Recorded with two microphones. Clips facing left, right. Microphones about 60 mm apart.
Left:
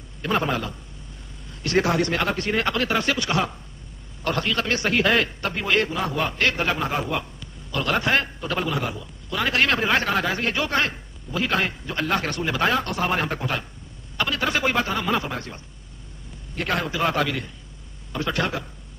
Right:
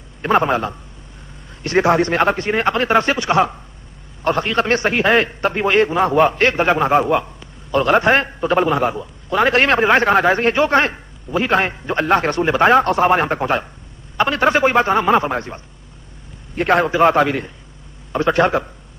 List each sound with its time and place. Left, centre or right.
0.2 s a man's voice: right